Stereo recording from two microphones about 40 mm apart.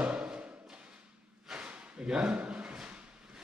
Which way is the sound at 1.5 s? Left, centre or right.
Centre.